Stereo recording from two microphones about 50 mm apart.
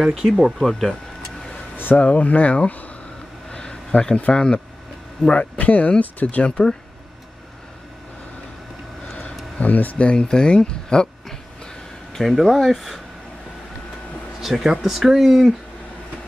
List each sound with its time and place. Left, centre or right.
0.0 s speech: centre
2.0 s speech: left
3.5 s a sound: centre
4.3 s speech: centre
5.3 s speech: left
6.5 s speech: centre
9.6 s speech: left
10.1 s speech: centre
12.1 s speech: centre
14.4 s speech: centre